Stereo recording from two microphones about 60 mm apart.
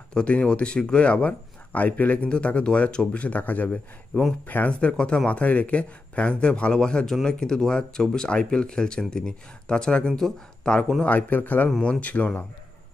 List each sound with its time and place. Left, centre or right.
0.1 s speech: centre
11.1 s speech: left